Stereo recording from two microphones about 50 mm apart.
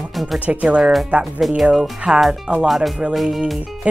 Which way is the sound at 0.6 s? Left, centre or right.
Right.